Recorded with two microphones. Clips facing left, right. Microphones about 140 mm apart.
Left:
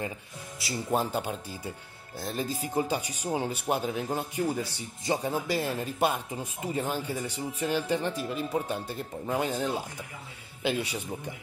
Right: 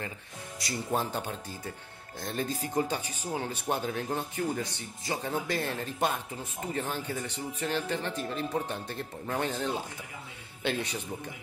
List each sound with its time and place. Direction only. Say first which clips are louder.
0.6 s speech: left 2 dB; 5° left (ahead or behind)
5.3 s speech: left 2 dB; 10° left (ahead or behind)